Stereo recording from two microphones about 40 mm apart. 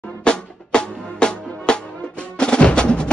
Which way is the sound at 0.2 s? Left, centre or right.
Left.